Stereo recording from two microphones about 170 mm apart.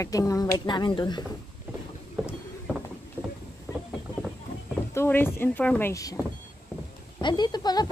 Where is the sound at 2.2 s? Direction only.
5° right (ahead or behind).